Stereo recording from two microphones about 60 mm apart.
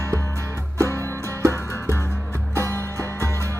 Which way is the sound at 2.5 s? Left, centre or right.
Right.